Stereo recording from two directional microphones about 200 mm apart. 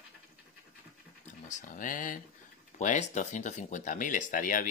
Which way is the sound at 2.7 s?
40° left (ahead or behind).